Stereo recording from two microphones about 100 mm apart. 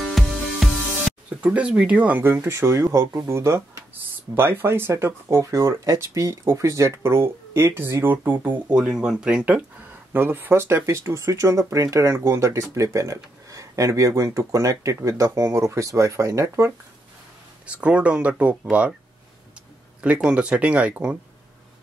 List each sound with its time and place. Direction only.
0.0 s music: centre (ahead or behind)
1.4 s speech: 15° right (ahead or behind); by 16.7 s 30° right (ahead or behind)
17.6 s speech: 10° right (ahead or behind)
20.0 s speech: 10° right (ahead or behind)